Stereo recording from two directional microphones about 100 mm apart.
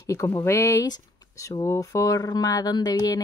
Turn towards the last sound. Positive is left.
turn(degrees=40)  # may be behind; listen again after turning